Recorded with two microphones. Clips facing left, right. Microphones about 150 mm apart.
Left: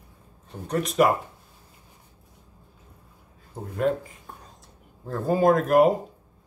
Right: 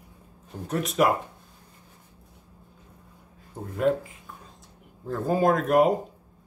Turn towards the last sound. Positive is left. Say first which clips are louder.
# left 2 dB
turn(degrees=0)  # may be behind; listen again after turning